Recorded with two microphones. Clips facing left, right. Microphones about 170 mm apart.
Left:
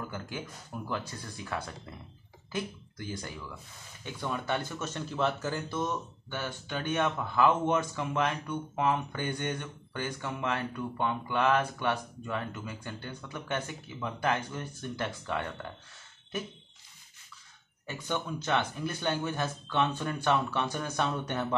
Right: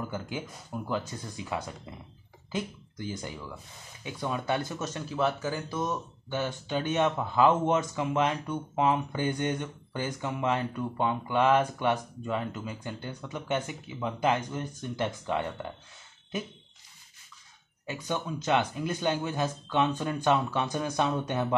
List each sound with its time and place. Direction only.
0.0 s speech: 15° right (ahead or behind)
17.8 s speech: 10° right (ahead or behind)